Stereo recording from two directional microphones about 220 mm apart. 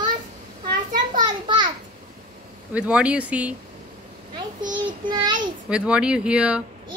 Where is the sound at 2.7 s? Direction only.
5° right (ahead or behind).